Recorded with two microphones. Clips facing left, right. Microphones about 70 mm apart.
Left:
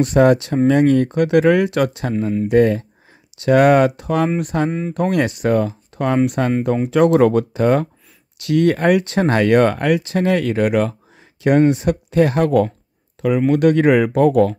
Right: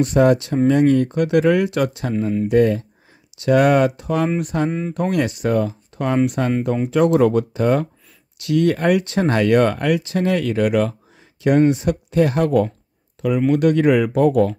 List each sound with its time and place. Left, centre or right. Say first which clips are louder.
0.0 s speech: left 2 dB; left
2.1 s speech: even; centre
2.5 s speech: left 2 dB; left
4.6 s speech: left 1 dB; centre
4.9 s speech: left 2 dB; left
11.7 s speech: left 2 dB; left